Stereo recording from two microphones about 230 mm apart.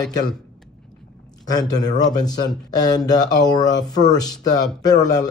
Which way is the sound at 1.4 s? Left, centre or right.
Centre.